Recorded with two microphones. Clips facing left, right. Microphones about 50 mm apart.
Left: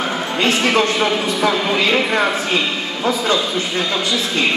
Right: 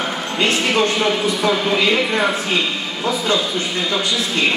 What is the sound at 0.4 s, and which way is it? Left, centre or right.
Speech, left.